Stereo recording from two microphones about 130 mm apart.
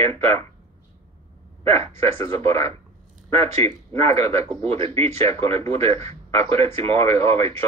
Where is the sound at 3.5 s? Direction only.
50° right (ahead or behind).